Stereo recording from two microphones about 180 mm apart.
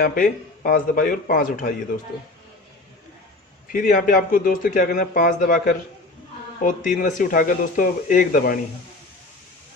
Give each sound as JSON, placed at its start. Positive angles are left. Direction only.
{"t": 0.0, "sound": "speech", "side_deg": 50}
{"t": 3.7, "sound": "speech", "side_deg": 45}
{"t": 6.6, "sound": "speech", "side_deg": 50}